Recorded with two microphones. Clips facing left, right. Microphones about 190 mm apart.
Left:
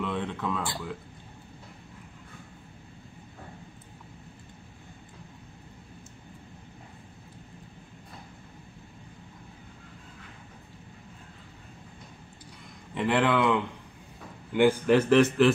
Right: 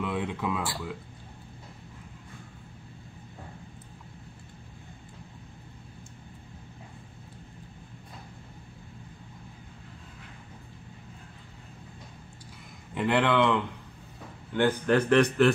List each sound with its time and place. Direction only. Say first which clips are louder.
0.0 s speech: right 1 dB; 10° right (ahead or behind)
12.9 s a man's voice: even; centre (ahead or behind)